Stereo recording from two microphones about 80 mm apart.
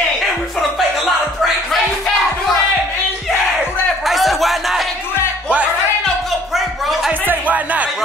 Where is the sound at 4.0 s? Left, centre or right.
Centre.